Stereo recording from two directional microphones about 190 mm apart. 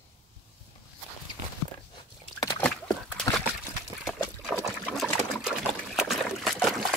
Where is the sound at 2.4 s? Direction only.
20° left (ahead or behind).